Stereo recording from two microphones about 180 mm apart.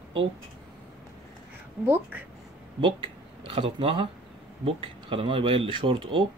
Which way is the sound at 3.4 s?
30° right (ahead or behind).